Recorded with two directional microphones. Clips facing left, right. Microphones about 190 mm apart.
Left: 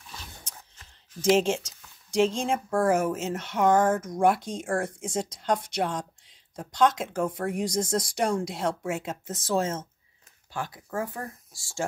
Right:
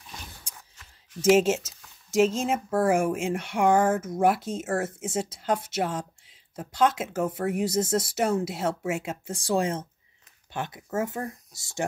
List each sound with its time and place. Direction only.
1.3 s speech: 5° right (ahead or behind)